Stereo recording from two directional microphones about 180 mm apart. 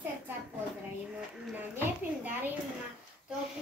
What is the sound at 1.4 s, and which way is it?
A woman's voice, 10° right (ahead or behind).